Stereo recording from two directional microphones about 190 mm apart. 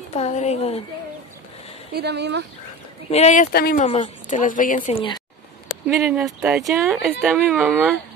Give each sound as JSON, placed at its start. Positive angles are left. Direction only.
{"t": 0.1, "sound": "speech", "side_deg": 35}
{"t": 2.0, "sound": "speech", "side_deg": -60}
{"t": 3.1, "sound": "speech", "side_deg": 35}
{"t": 3.5, "sound": "speech", "side_deg": 55}
{"t": 3.8, "sound": "speech", "side_deg": 40}
{"t": 4.9, "sound": "speech", "side_deg": 25}
{"t": 5.9, "sound": "speech", "side_deg": -10}